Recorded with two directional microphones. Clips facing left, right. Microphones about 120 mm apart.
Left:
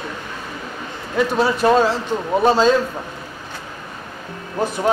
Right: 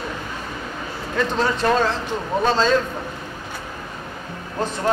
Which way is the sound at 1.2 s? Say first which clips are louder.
Left 4 dB; 10° left (ahead or behind).